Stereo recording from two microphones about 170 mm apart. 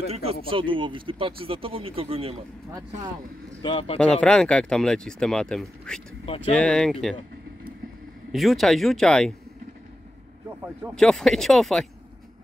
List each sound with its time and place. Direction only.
0.1 s speech: 35° right (ahead or behind)
3.6 s speech: 30° left (ahead or behind)
4.0 s speech: 5° left (ahead or behind)
6.2 s speech: 35° left (ahead or behind)
6.5 s speech: 5° left (ahead or behind)
8.3 s speech: centre (ahead or behind)
11.0 s speech: 5° left (ahead or behind)